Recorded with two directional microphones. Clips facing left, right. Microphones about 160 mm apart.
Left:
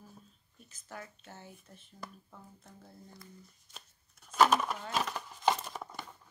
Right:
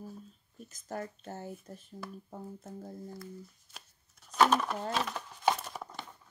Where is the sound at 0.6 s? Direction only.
40° right (ahead or behind).